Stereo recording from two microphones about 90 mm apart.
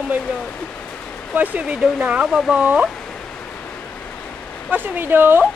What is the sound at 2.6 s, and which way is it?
Speech, 15° right (ahead or behind).